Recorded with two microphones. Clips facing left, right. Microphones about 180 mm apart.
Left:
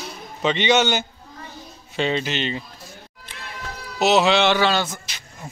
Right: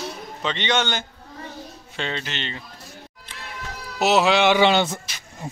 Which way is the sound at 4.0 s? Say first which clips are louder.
Left 1 dB; 5° right (ahead or behind).